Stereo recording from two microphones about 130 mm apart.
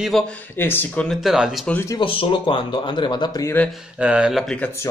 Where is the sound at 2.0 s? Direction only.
40° left (ahead or behind).